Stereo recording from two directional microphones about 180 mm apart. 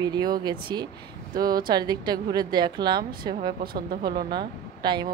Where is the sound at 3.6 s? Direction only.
55° right (ahead or behind).